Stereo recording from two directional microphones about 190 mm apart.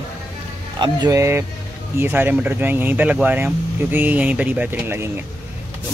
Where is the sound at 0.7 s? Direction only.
20° right (ahead or behind).